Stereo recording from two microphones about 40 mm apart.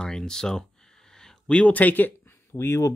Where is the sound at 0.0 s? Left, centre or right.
Centre.